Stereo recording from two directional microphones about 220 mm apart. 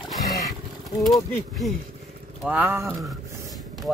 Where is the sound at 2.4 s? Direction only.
10° right (ahead or behind).